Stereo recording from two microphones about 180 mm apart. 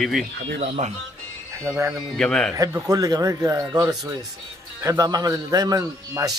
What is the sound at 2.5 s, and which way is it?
A man's voice, 20° right (ahead or behind).